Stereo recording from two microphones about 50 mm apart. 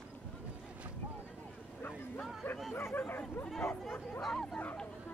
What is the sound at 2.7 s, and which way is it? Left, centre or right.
Bow-wow, left.